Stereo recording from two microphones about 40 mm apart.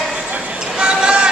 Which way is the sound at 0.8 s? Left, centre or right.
Right.